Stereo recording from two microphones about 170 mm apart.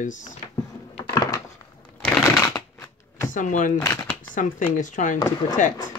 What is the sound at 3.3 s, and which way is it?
Speech, 50° left (ahead or behind).